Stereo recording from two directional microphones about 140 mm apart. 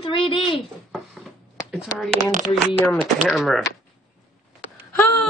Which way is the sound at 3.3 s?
Centre (ahead or behind).